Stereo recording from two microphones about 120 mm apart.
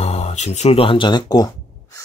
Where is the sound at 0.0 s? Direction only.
60° left (ahead or behind); by 2.0 s 30° left (ahead or behind).